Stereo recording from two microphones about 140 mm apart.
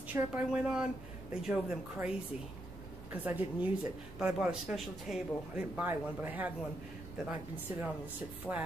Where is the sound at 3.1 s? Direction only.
15° right (ahead or behind).